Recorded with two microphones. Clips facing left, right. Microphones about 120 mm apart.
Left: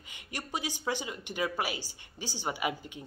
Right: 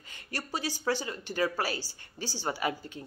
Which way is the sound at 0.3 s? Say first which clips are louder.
Right 2 dB; 15° left (ahead or behind).